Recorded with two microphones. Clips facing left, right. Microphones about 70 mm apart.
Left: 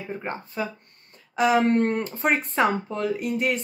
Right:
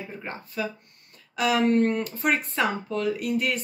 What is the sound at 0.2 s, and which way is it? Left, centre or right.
Speech, left.